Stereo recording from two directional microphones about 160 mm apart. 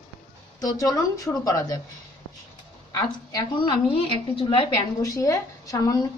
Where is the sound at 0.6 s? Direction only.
20° left (ahead or behind).